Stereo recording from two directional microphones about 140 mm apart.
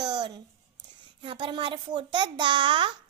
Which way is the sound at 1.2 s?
35° right (ahead or behind).